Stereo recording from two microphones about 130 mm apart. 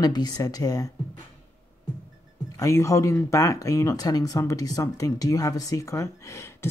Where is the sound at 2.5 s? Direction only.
25° left (ahead or behind).